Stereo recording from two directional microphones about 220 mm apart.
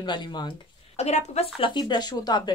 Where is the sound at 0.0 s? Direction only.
20° left (ahead or behind).